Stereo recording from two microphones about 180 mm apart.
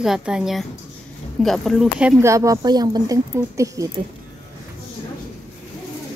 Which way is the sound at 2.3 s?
20° right (ahead or behind).